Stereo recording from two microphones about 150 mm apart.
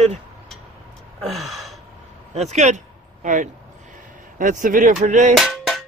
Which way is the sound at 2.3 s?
50° right (ahead or behind).